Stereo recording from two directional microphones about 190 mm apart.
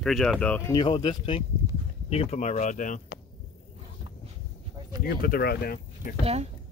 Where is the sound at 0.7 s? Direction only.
25° left (ahead or behind); by 3.0 s 40° left (ahead or behind).